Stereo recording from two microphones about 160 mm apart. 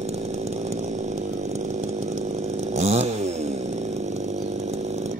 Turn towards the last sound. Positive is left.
turn(degrees=-45)  # may be behind; listen again after turning